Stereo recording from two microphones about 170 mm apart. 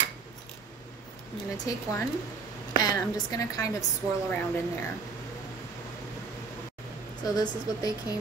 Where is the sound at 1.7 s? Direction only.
20° left (ahead or behind).